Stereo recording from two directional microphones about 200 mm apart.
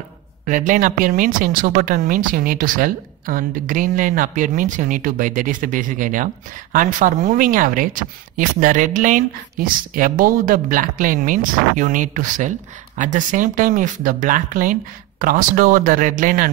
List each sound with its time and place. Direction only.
0.5 s speech: 40° right (ahead or behind)